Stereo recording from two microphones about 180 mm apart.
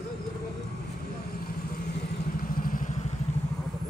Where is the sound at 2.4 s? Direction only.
50° left (ahead or behind).